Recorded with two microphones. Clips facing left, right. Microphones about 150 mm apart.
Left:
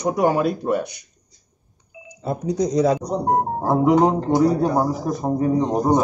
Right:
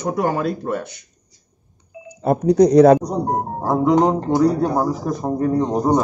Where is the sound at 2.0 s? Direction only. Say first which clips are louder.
Right 8 dB; 60° right (ahead or behind).